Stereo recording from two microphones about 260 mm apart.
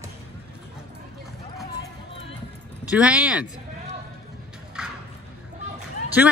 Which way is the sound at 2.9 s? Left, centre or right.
Centre.